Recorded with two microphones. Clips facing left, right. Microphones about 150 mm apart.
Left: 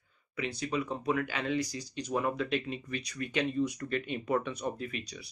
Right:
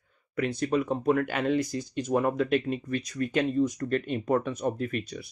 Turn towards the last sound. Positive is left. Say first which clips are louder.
# right 7 dB
turn(degrees=-50)  # may be behind; listen again after turning